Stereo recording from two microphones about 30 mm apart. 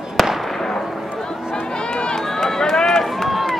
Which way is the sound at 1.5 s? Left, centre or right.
Left.